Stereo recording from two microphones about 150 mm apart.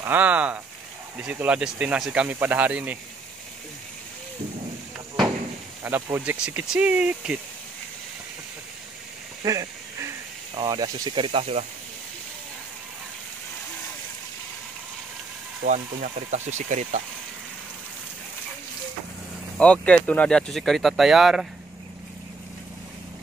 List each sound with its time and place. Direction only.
0.0 s speech: 10° right (ahead or behind)
5.9 s speech: 15° right (ahead or behind)
9.4 s duck: 20° right (ahead or behind)
10.5 s speech: 30° right (ahead or behind)
15.6 s speech: 60° right (ahead or behind)
19.6 s speech: 5° left (ahead or behind)